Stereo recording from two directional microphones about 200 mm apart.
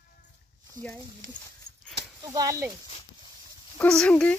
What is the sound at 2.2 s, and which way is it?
Speech, 20° right (ahead or behind).